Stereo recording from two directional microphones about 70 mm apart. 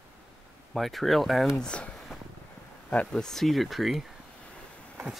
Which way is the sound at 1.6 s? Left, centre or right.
Centre.